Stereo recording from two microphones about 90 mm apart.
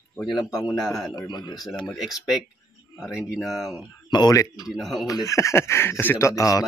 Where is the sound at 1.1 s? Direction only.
55° left (ahead or behind).